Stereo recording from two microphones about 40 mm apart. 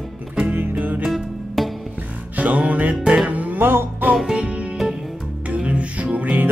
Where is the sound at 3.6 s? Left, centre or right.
Right.